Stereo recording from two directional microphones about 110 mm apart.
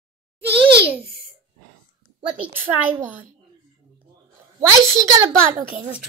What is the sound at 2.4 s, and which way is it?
Speech, 20° right (ahead or behind).